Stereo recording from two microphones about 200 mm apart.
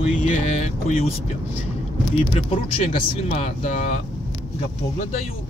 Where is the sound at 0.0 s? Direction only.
35° left (ahead or behind).